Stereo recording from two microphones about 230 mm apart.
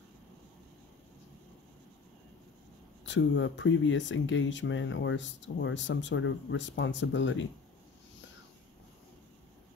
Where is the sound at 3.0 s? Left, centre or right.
Left.